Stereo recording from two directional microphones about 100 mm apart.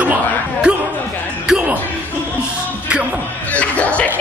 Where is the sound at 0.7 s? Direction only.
10° right (ahead or behind).